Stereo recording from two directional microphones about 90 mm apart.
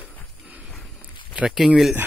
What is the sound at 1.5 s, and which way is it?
Speech, 5° right (ahead or behind).